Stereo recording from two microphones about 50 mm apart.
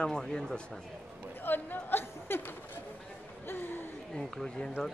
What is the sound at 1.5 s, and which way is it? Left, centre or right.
Speech, left.